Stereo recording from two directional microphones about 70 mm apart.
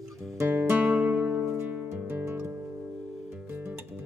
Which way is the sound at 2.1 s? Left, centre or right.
Right.